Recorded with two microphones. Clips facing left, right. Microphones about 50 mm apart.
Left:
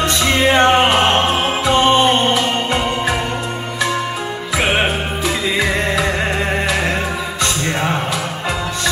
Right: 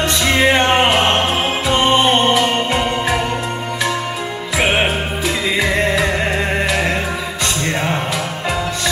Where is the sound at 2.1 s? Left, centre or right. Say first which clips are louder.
Right 1 dB; right.